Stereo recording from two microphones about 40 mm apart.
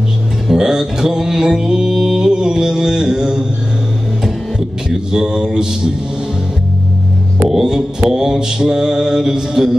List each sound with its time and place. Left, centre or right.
0.5 s music: centre
4.8 s a sound: right
7.4 s music: centre